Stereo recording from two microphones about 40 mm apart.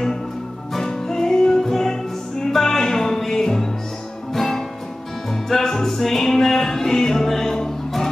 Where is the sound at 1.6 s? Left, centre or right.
Centre.